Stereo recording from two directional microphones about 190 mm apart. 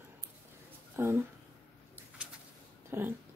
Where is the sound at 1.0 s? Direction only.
15° right (ahead or behind).